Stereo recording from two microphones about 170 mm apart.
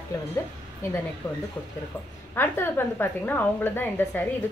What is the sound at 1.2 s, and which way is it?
A woman's voice, 10° left (ahead or behind).